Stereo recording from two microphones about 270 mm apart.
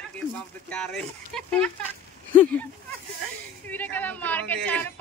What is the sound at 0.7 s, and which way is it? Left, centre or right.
Speech, centre.